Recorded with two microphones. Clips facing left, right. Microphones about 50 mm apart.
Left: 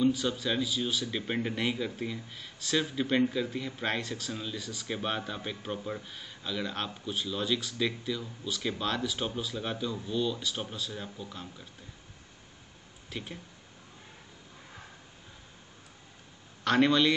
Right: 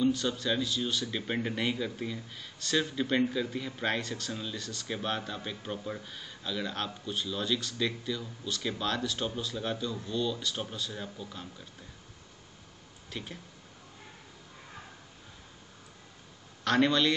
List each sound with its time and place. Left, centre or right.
0.0 s speech: centre
13.1 s speech: centre
16.6 s speech: centre